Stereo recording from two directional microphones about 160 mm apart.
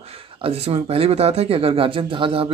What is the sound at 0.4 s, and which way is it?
Speech, 40° right (ahead or behind).